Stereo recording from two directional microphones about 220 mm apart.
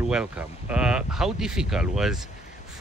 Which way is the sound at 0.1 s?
5° right (ahead or behind).